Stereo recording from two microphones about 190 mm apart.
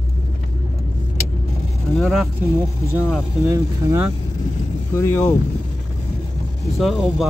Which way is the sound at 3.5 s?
15° right (ahead or behind).